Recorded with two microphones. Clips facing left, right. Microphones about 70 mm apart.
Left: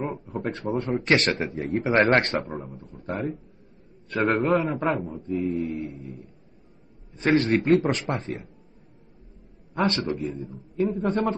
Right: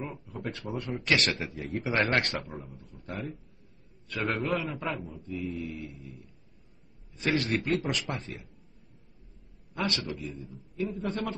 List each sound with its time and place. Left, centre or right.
0.0 s a man's voice: left
5.1 s a man's voice: left
9.8 s a man's voice: left
10.4 s a man's voice: left